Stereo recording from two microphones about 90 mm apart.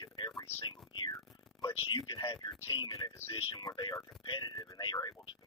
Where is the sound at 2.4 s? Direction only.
50° left (ahead or behind).